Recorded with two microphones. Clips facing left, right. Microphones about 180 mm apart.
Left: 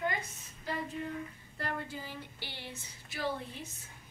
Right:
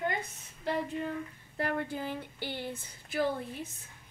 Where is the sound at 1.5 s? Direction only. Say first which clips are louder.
Right 6 dB; 60° right (ahead or behind).